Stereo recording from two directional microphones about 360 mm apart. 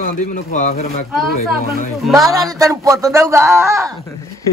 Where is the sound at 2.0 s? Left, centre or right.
Centre.